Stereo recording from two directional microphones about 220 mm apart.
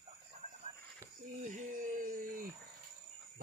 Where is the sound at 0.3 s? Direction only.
30° right (ahead or behind).